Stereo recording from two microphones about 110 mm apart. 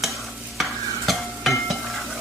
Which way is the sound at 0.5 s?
Centre (ahead or behind).